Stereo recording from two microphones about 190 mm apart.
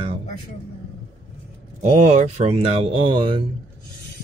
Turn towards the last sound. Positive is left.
turn(degrees=-25)  # may be behind; listen again after turning